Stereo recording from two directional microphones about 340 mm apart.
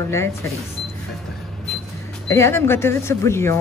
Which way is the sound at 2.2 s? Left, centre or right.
Centre.